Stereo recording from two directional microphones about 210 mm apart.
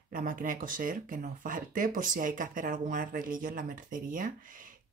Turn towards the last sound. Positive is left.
turn(degrees=-40)  # may be behind; listen again after turning